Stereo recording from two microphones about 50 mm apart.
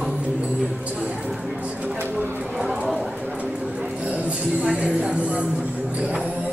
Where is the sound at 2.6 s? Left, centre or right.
Centre.